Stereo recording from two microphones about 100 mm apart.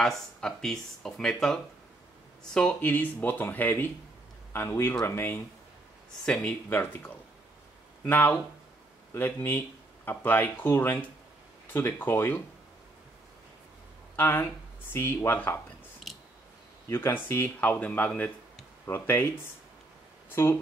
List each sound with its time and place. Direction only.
0.4 s speech: 5° left (ahead or behind); by 5.4 s 20° left (ahead or behind)
6.2 s speech: 10° left (ahead or behind)
6.7 s speech: 20° left (ahead or behind)
14.1 s speech: 20° left (ahead or behind)
16.9 s speech: 25° left (ahead or behind)